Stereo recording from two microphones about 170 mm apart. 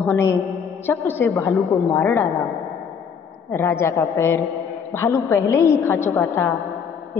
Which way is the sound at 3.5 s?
15° left (ahead or behind).